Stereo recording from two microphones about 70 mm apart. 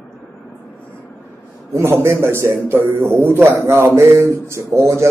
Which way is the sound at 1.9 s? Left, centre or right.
Right.